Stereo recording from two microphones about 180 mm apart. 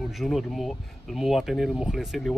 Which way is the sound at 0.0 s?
Centre (ahead or behind).